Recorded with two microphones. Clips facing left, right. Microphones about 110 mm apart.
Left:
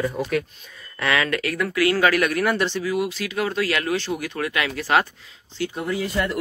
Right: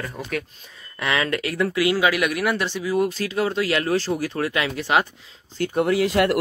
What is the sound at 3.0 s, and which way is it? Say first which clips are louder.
Speech: right 3 dB; 40° right (ahead or behind).